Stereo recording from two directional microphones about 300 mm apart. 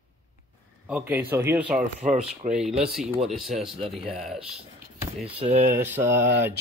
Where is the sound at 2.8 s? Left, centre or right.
Centre.